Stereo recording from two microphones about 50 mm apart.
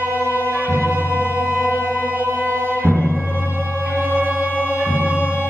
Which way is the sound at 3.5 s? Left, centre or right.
Right.